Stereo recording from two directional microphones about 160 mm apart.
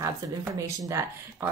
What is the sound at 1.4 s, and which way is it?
Speech, 15° right (ahead or behind).